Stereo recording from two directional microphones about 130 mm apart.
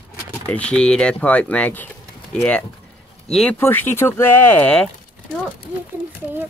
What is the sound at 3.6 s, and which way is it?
Speech, 15° left (ahead or behind).